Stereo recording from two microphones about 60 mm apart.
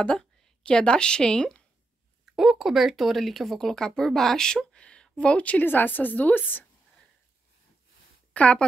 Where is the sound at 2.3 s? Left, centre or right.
Centre; by 6.6 s left.